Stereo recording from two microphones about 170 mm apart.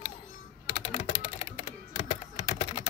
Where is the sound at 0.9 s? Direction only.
35° left (ahead or behind).